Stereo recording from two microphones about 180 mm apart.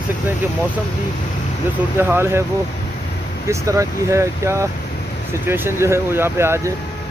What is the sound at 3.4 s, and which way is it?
Speech, 15° right (ahead or behind).